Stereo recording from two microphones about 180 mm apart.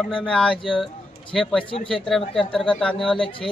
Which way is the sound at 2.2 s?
30° left (ahead or behind).